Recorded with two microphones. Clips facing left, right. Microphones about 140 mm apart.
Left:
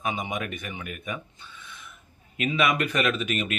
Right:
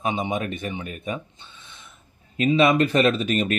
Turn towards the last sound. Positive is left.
turn(degrees=-35)  # may be behind; listen again after turning